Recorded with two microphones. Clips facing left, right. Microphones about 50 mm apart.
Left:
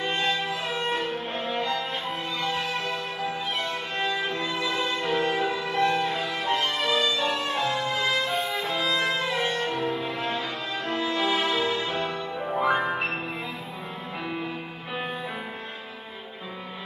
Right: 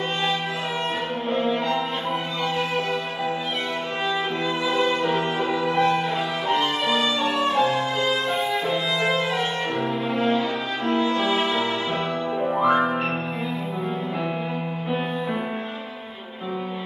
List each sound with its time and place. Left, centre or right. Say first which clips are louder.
5.0 s music: right 2 dB; right
7.3 s music: right 6 dB; right
12.4 s music: right 4 dB; centre
12.6 s music: right 4 dB; centre